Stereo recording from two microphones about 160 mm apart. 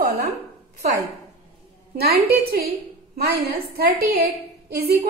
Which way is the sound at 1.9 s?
75° right (ahead or behind).